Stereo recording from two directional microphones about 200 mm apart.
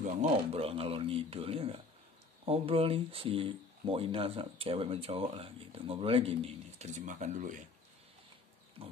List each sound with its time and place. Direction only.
0.0 s speech: 35° right (ahead or behind)